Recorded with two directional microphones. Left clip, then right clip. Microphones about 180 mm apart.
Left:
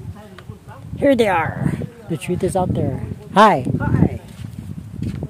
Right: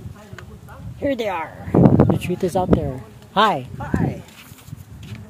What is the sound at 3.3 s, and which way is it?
Speech, 65° left (ahead or behind).